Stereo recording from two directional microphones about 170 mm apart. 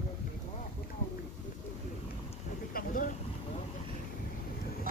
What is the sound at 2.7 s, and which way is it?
Vehicle, 55° left (ahead or behind).